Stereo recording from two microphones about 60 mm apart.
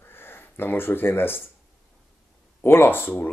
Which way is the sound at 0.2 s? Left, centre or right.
Left.